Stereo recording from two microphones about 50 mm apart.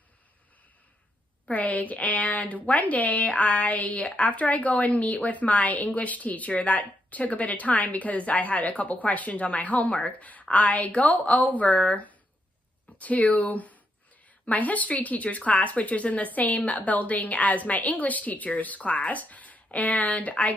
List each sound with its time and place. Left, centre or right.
1.5 s a woman's voice: left